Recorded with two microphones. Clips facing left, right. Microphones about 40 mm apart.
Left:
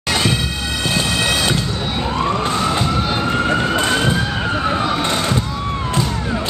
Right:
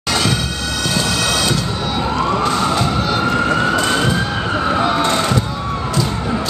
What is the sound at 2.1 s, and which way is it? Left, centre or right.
Emergency vehicle, left.